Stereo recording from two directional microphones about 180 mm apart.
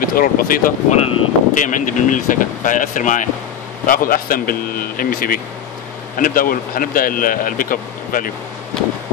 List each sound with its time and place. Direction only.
0.0 s speech: 50° left (ahead or behind)